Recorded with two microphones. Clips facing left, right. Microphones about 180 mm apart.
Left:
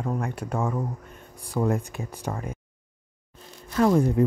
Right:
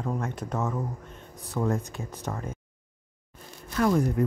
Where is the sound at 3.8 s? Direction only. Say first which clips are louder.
Left 3 dB; 25° left (ahead or behind).